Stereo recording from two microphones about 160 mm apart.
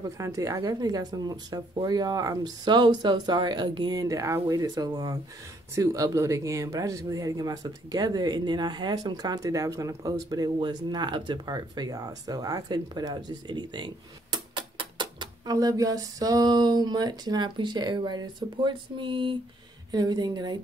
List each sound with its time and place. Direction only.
0.0 s speech: 20° right (ahead or behind)